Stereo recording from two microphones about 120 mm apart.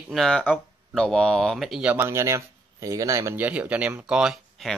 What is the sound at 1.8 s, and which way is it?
Speech, 20° right (ahead or behind).